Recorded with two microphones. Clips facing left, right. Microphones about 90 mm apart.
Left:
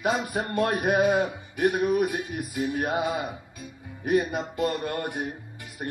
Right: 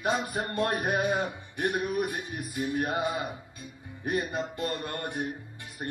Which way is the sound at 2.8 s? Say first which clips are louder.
Left 3 dB; 20° left (ahead or behind).